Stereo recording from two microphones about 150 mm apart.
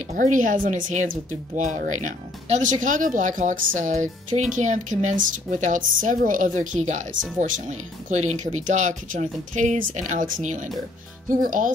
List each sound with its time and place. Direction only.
0.1 s speech: 60° right (ahead or behind)